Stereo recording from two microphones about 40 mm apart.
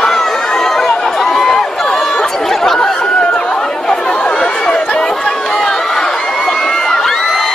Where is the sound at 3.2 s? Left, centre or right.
Left.